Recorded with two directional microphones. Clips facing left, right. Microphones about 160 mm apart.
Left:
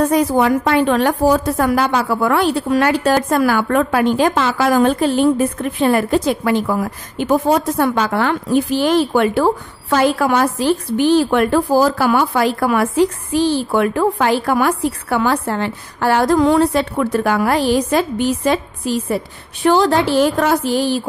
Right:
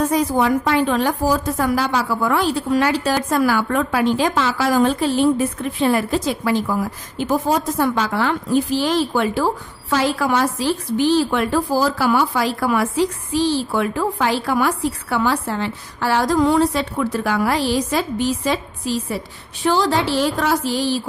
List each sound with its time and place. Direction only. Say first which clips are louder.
0.0 s a woman's voice: left 3 dB; 60° left (ahead or behind)